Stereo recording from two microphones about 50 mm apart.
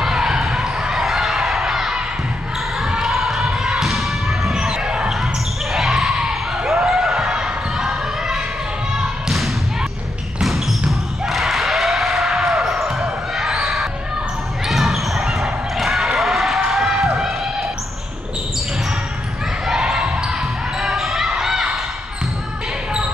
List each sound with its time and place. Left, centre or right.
0.0 s a sound: centre
2.8 s basketball bounce: centre
4.8 s basketball bounce: centre
5.1 s basketball bounce: centre
6.7 s a sound: centre
7.7 s basketball bounce: centre
8.9 s thump: centre
10.4 s basketball bounce: centre
19.6 s basketball bounce: centre
20.8 s a sound: centre